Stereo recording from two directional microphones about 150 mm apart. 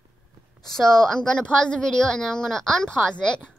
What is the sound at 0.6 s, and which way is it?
A woman's voice, 5° left (ahead or behind).